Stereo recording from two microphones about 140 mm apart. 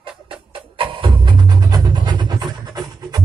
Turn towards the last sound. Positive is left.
turn(degrees=-30)  # may be behind; listen again after turning